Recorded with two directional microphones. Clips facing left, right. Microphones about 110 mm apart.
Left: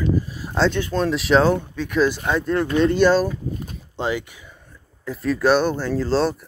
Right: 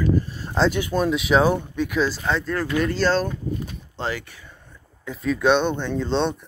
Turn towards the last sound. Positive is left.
turn(degrees=5)  # may be behind; listen again after turning